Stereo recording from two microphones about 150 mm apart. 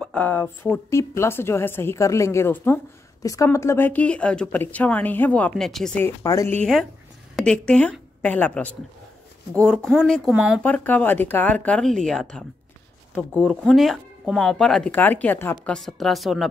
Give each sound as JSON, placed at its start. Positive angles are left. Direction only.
{"t": 0.0, "sound": "speech", "side_deg": 10}
{"t": 5.9, "sound": "speech", "side_deg": 20}
{"t": 6.6, "sound": "a woman's voice", "side_deg": 0}
{"t": 10.6, "sound": "speech", "side_deg": 10}